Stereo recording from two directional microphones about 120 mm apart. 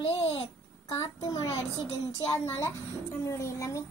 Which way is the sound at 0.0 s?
55° left (ahead or behind).